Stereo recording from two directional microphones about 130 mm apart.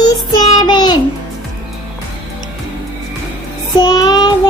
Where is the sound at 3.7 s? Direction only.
30° left (ahead or behind).